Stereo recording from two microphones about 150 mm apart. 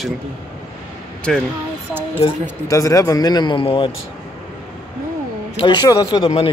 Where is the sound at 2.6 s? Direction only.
20° left (ahead or behind).